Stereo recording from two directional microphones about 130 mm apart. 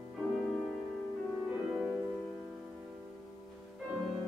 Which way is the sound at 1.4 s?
10° right (ahead or behind).